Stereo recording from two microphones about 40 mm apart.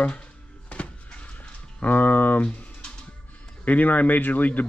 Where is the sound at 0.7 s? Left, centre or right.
Left.